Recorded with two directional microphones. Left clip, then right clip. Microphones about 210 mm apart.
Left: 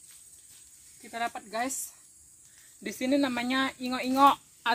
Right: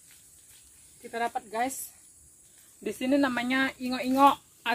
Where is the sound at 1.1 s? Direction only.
35° left (ahead or behind).